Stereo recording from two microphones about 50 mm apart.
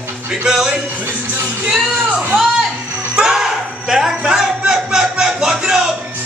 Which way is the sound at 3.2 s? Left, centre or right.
Centre.